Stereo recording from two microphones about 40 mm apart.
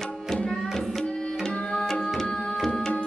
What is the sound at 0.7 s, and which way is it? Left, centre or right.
Tabla, centre.